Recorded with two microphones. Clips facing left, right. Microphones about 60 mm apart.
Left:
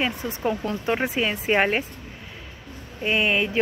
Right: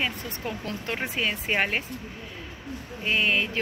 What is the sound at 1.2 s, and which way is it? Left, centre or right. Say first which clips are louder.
Speech: left 4 dB; centre.